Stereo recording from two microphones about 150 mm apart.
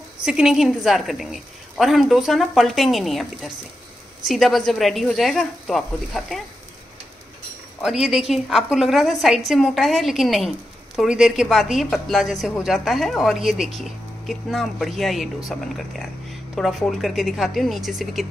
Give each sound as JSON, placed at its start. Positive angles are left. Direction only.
{"t": 0.2, "sound": "a woman's voice", "side_deg": -5}
{"t": 7.8, "sound": "a woman's voice", "side_deg": -5}